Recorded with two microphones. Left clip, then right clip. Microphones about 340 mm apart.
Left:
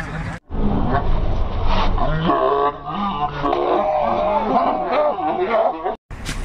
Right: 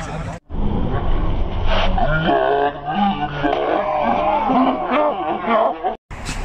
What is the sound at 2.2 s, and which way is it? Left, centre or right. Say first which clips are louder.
Music: left 1 dB; centre.